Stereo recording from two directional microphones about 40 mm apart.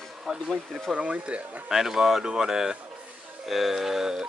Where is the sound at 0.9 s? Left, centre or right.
Right.